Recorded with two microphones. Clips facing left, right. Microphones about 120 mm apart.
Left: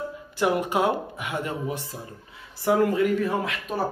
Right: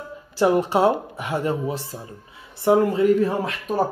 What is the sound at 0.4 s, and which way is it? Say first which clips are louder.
Speech: right 5 dB; 30° right (ahead or behind).